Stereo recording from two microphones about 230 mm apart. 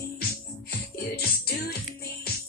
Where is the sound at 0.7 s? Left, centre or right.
Left.